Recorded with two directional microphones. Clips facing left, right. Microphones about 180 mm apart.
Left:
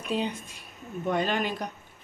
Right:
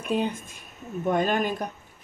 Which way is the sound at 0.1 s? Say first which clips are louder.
Right 3 dB; 55° right (ahead or behind).